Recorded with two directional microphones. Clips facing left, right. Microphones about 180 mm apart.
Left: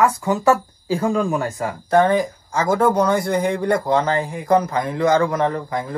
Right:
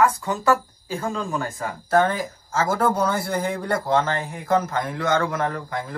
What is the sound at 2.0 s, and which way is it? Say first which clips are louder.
Speech: left 5 dB; centre (ahead or behind).